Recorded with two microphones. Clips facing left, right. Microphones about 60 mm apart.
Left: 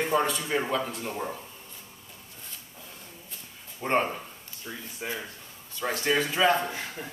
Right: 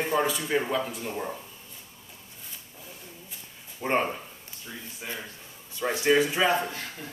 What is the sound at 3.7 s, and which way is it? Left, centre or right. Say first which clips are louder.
Speech: even; centre.